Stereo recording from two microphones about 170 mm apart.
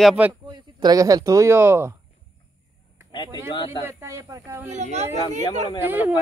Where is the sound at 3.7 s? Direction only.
15° right (ahead or behind).